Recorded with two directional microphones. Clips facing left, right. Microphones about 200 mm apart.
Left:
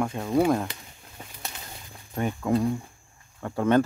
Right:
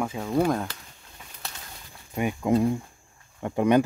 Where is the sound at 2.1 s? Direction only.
10° right (ahead or behind).